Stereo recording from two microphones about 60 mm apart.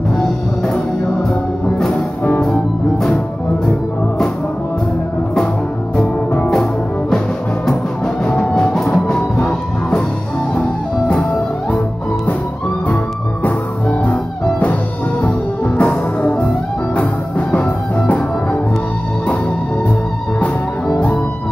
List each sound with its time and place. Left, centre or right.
2.2 s music: left
2.5 s music: centre
6.4 s music: centre
8.2 s music: centre
12.8 s music: left
15.2 s music: left
17.9 s music: left